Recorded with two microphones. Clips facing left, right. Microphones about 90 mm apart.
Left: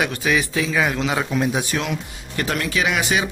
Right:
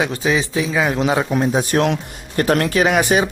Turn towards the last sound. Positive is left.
turn(degrees=-40)  # may be behind; listen again after turning